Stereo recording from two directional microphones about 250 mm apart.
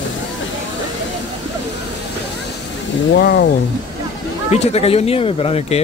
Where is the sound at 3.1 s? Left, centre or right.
Left.